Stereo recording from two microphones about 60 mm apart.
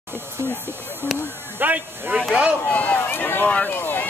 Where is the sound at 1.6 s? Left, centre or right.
Right.